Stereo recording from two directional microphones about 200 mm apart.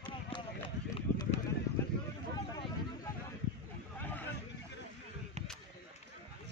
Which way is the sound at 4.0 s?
10° left (ahead or behind).